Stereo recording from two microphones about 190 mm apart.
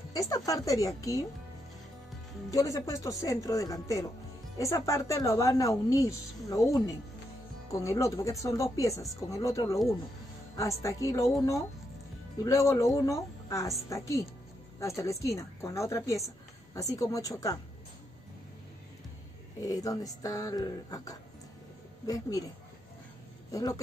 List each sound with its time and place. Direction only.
0.5 s speech: 15° left (ahead or behind)
2.5 s speech: 15° left (ahead or behind)
12.4 s speech: 15° left (ahead or behind)
19.6 s speech: 20° left (ahead or behind)
23.5 s speech: 20° left (ahead or behind)